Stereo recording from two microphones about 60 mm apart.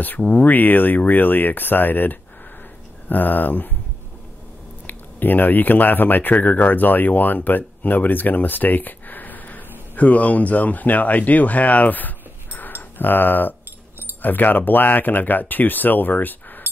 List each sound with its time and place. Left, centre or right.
0.0 s speech: left
4.8 s speech: left
12.5 s a sound: left
14.2 s speech: left